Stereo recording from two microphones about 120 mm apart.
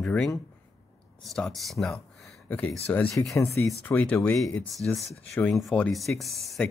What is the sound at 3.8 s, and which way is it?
Speech, 15° left (ahead or behind).